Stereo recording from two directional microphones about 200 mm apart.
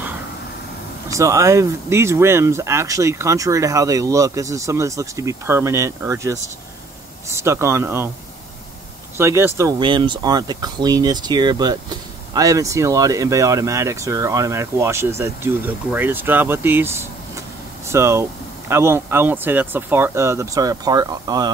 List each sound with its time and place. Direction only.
1.0 s speech: 15° right (ahead or behind)
9.2 s speech: 15° right (ahead or behind)